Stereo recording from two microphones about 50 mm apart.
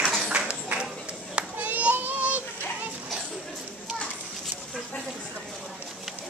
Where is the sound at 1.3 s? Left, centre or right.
Right.